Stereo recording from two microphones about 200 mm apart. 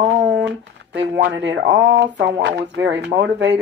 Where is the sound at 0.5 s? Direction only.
65° right (ahead or behind).